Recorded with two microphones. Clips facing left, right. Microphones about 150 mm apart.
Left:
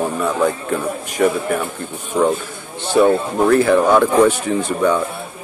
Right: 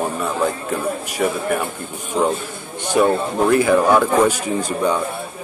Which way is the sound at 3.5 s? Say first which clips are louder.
Left 2 dB; 10° right (ahead or behind).